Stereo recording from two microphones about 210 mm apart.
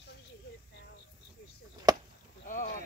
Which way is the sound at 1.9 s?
20° right (ahead or behind).